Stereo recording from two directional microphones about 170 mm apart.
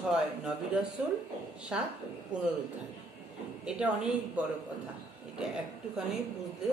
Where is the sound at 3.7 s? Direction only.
5° right (ahead or behind).